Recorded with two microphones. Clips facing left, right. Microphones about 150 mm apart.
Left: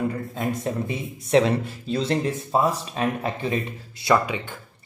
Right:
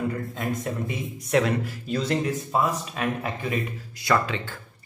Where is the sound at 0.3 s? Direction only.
25° left (ahead or behind).